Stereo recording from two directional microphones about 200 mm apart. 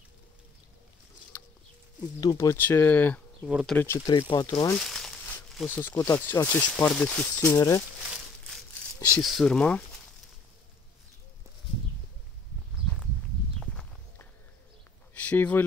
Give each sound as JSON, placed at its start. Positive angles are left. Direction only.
{"t": 2.0, "sound": "speech", "side_deg": 20}
{"t": 3.4, "sound": "speech", "side_deg": -5}
{"t": 3.7, "sound": "speech", "side_deg": 10}
{"t": 4.7, "sound": "speech", "side_deg": 0}
{"t": 9.1, "sound": "speech", "side_deg": 0}
{"t": 13.6, "sound": "walk", "side_deg": 5}
{"t": 15.1, "sound": "a sound", "side_deg": 5}